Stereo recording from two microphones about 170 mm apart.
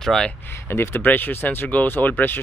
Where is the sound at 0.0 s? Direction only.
5° left (ahead or behind).